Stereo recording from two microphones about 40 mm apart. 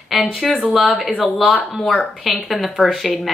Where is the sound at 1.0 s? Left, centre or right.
Left.